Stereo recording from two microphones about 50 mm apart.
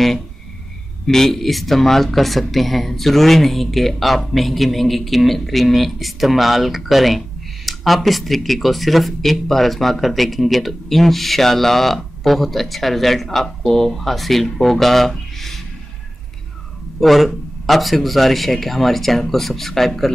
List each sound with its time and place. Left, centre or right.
1.0 s speech: centre
17.0 s speech: centre